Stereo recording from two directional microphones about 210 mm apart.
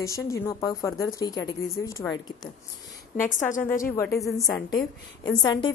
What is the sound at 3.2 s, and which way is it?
Speech, 40° left (ahead or behind).